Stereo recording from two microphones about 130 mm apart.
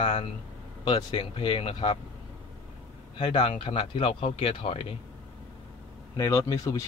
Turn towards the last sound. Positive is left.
turn(degrees=25)  # may be behind; listen again after turning